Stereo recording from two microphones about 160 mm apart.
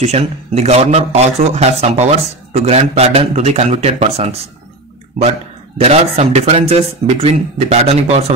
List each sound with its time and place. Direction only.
0.0 s a man's voice: 40° right (ahead or behind)
5.8 s a man's voice: 40° right (ahead or behind)